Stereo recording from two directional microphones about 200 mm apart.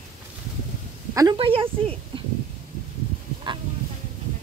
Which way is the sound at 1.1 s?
25° right (ahead or behind).